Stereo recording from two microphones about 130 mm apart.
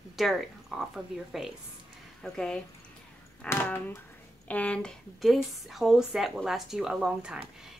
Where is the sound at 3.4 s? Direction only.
15° left (ahead or behind).